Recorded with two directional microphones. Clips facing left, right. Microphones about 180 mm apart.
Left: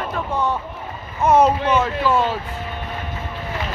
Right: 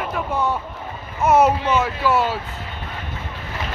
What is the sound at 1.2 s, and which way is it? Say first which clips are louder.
Speech: left 1 dB; 5° right (ahead or behind).